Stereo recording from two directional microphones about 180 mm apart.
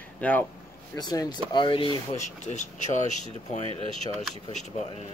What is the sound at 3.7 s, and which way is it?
Speech, 35° right (ahead or behind).